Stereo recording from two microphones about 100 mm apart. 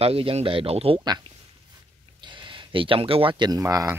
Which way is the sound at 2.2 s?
55° right (ahead or behind).